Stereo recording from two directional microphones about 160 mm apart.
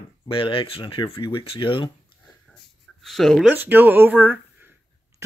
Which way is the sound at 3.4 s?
10° right (ahead or behind).